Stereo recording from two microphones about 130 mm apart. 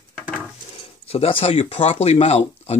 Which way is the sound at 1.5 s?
60° left (ahead or behind).